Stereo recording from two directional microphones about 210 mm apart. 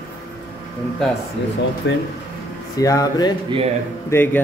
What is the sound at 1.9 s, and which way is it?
Speech, 55° left (ahead or behind).